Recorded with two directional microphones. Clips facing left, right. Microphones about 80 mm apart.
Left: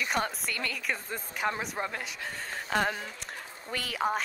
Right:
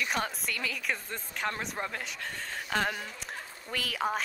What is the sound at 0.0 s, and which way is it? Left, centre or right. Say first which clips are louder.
A woman's voice: left 1 dB; centre.